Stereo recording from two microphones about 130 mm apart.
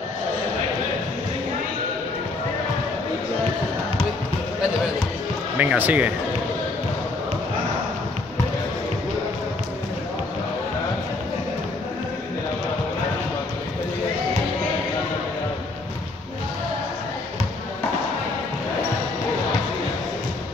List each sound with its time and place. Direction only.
5.6 s speech: 15° right (ahead or behind)